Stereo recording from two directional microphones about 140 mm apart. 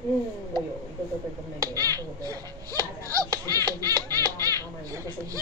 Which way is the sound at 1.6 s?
25° right (ahead or behind).